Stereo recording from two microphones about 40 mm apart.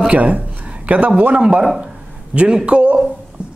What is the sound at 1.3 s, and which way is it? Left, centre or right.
A man's voice, right.